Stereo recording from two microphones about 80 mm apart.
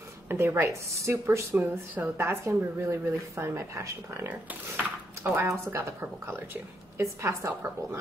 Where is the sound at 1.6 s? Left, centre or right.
Right.